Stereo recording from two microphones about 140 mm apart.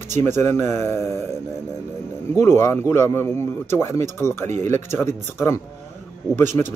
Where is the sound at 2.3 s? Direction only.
20° left (ahead or behind).